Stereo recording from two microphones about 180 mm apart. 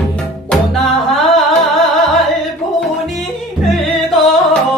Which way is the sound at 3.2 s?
Centre (ahead or behind).